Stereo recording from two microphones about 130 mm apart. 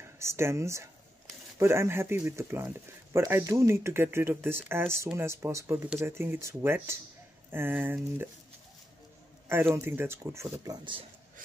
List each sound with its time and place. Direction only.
0.2 s speech: 20° right (ahead or behind)
9.8 s speech: 20° right (ahead or behind)